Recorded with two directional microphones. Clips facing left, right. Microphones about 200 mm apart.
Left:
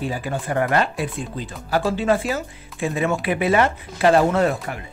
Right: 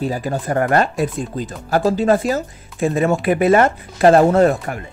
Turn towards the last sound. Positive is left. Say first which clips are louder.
# right 6 dB
turn(degrees=-45)  # may be behind; listen again after turning